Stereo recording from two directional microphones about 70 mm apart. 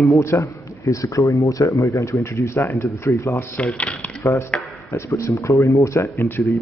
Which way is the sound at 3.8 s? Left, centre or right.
Centre.